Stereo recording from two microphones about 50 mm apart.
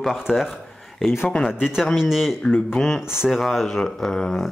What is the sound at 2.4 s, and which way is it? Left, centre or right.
Speech, centre.